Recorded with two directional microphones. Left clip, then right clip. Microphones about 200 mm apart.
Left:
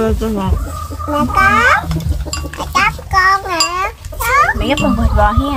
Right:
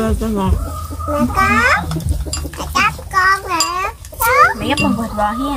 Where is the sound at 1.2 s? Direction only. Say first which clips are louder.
Left 3 dB; 30° left (ahead or behind).